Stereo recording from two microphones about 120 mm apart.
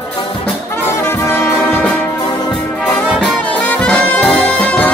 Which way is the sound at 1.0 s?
20° left (ahead or behind).